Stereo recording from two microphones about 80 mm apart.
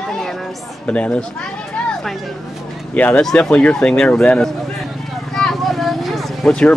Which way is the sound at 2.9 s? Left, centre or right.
Centre.